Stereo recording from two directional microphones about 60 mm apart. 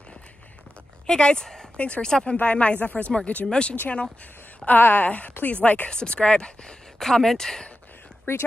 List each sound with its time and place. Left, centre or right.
1.0 s speech: centre
3.1 s speech: centre
4.6 s speech: left; by 7.7 s centre
8.3 s speech: left